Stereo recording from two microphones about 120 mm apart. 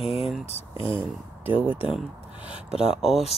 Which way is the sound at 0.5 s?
55° left (ahead or behind).